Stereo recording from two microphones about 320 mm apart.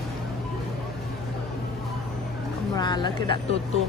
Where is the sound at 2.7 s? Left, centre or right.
Centre.